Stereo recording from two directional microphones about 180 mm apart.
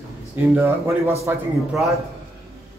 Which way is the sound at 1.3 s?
10° right (ahead or behind).